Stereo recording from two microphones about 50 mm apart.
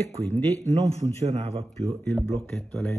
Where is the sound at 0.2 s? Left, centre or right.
Left.